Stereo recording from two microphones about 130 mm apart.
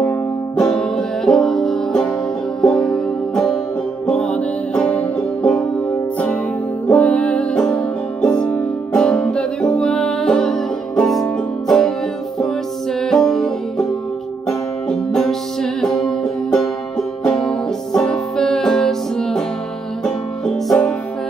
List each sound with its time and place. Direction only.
0.6 s music: 5° left (ahead or behind)
6.9 s music: 10° left (ahead or behind)
13.0 s music: 5° left (ahead or behind)
20.6 s music: 5° left (ahead or behind)